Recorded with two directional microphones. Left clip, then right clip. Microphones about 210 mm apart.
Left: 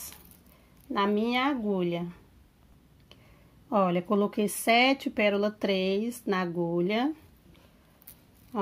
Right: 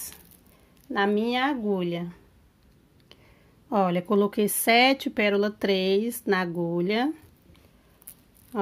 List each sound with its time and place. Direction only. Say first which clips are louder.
0.9 s speech: right 2 dB; 10° right (ahead or behind)
3.6 s speech: right 2 dB; 15° right (ahead or behind)